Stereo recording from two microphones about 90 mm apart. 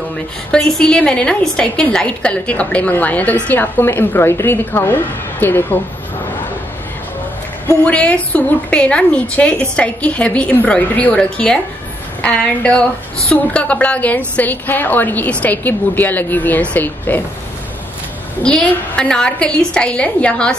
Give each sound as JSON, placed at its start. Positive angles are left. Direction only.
{"t": 0.5, "sound": "a woman's voice", "side_deg": 10}
{"t": 7.8, "sound": "a woman's voice", "side_deg": 15}
{"t": 18.4, "sound": "a woman's voice", "side_deg": 10}